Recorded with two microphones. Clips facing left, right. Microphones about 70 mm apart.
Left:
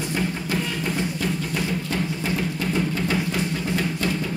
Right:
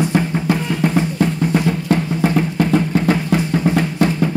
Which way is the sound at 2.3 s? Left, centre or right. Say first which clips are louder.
Right 8 dB; right.